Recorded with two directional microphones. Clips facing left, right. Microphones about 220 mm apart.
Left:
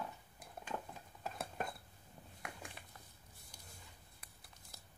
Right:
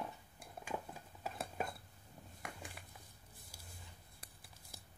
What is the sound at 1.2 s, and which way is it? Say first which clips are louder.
Dishes: right 1 dB; centre (ahead or behind).